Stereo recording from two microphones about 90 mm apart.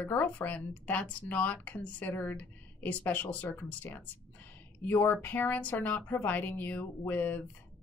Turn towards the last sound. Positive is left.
turn(degrees=20)  # may be behind; listen again after turning